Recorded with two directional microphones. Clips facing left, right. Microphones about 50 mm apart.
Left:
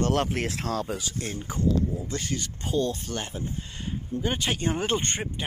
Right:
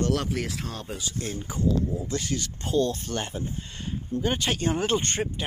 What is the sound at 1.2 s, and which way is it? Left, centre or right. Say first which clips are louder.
Speech: even; left.